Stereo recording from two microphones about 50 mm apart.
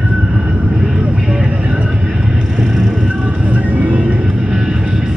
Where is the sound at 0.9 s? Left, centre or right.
Centre.